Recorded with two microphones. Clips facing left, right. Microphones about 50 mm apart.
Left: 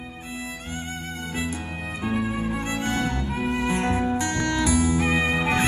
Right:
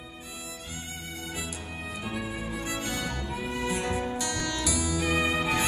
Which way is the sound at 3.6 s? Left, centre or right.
Left.